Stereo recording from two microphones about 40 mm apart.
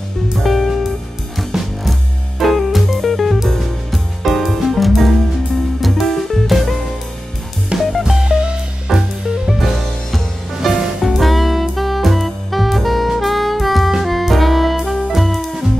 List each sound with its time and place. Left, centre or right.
0.4 s music: centre
8.0 s music: centre
8.9 s music: centre